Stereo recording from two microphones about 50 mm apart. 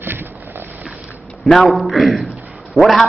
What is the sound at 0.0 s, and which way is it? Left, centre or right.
Boat, right.